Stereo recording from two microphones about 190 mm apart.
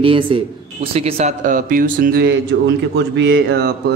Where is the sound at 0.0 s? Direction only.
30° right (ahead or behind).